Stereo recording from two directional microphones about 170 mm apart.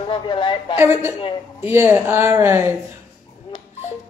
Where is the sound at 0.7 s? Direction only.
15° right (ahead or behind).